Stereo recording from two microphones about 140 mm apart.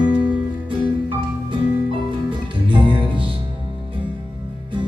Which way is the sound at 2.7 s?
35° right (ahead or behind).